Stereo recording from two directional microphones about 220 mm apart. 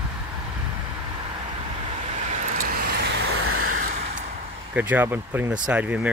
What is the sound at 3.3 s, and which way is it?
Vehicle, 75° right (ahead or behind).